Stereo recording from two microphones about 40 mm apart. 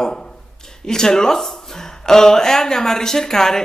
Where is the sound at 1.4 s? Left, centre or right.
Centre.